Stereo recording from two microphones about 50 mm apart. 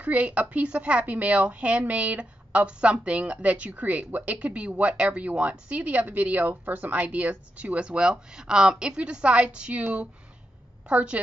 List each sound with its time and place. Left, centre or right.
0.0 s a woman's voice: right
10.9 s a woman's voice: right